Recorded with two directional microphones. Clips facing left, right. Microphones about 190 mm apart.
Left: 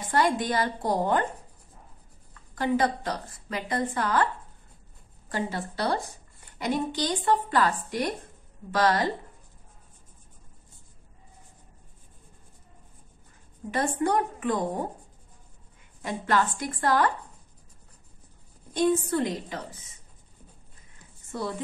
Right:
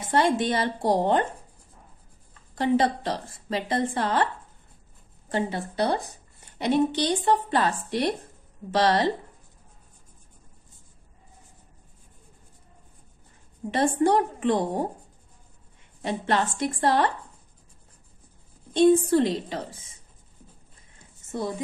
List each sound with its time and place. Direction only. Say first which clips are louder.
0.0 s a woman's voice: right 2 dB; 25° right (ahead or behind)
2.3 s a woman's voice: right 3 dB; 25° right (ahead or behind)
5.3 s a woman's voice: right 3 dB; 20° right (ahead or behind)
13.7 s a woman's voice: right 4 dB; 30° right (ahead or behind)
16.0 s a woman's voice: right 1 dB; 25° right (ahead or behind)
18.7 s a woman's voice: right 6 dB; 30° right (ahead or behind)
21.2 s a sound: right 2 dB; 20° right (ahead or behind)